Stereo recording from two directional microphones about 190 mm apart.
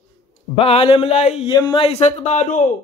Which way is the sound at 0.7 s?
30° left (ahead or behind).